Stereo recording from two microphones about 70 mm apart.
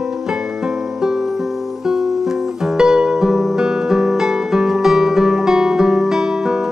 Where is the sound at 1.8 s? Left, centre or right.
Centre.